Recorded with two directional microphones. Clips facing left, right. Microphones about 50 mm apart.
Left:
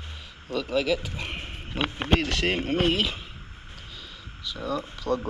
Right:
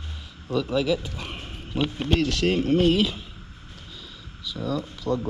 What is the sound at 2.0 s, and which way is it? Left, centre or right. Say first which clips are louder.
Speech: right 1 dB; left.